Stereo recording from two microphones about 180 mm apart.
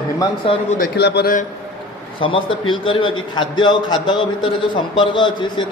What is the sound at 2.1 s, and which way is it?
A man's voice, 30° left (ahead or behind).